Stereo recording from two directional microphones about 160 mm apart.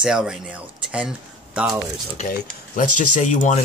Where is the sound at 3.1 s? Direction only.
50° left (ahead or behind).